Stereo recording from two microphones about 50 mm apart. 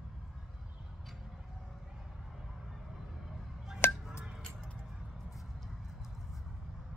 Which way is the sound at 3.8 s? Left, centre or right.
Left.